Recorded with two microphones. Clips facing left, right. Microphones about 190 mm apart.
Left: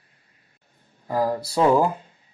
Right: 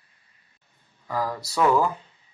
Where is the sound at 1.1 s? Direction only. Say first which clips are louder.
Left 5 dB; 45° left (ahead or behind).